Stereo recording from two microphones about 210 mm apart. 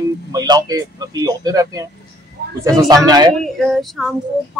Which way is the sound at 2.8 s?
15° right (ahead or behind).